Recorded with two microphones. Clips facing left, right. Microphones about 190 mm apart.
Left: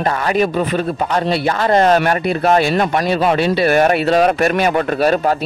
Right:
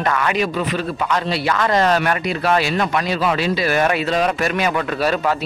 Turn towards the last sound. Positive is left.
turn(degrees=50)  # may be behind; listen again after turning